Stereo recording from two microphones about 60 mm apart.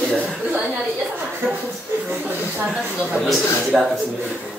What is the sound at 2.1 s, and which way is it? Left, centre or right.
Speech, right.